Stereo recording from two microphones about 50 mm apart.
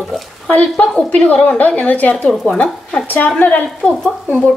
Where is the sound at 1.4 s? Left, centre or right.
Left.